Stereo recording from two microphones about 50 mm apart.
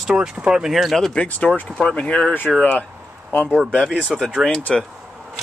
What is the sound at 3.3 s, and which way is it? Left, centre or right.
Speech, left.